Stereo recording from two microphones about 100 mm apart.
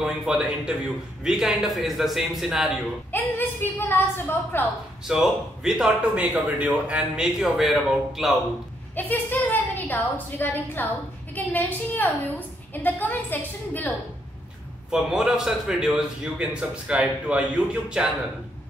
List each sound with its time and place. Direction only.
0.0 s a man's voice: 10° right (ahead or behind)
3.1 s a woman's voice: 20° left (ahead or behind)
5.0 s speech: 5° right (ahead or behind)
8.9 s a woman's voice: 20° left (ahead or behind)
14.9 s a man's voice: 5° right (ahead or behind)